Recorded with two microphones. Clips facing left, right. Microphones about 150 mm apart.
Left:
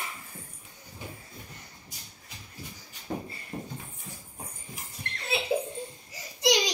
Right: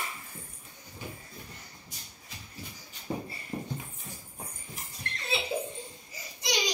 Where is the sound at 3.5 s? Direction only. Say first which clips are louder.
Right 1 dB; centre (ahead or behind).